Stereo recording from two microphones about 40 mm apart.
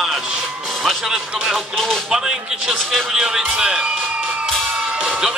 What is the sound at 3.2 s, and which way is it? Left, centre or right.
Speech, centre.